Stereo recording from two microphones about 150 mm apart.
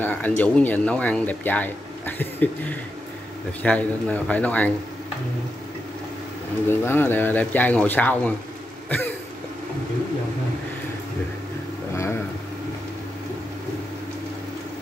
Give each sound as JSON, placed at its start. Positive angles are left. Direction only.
{"t": 0.0, "sound": "speech", "side_deg": 10}
{"t": 3.6, "sound": "speech", "side_deg": 10}
{"t": 6.7, "sound": "speech", "side_deg": 15}
{"t": 11.9, "sound": "a sound", "side_deg": 20}